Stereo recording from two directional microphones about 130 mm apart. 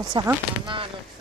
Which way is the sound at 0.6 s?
40° right (ahead or behind).